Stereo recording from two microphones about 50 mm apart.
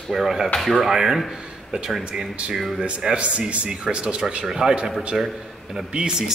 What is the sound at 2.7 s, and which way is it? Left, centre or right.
A man's voice, centre.